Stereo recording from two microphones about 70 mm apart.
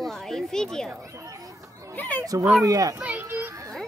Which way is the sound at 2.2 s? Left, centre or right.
Right.